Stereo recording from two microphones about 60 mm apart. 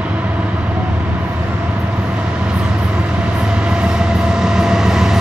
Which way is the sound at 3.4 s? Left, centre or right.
Centre.